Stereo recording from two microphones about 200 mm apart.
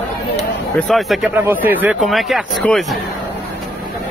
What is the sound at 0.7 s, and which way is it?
Speech, centre (ahead or behind).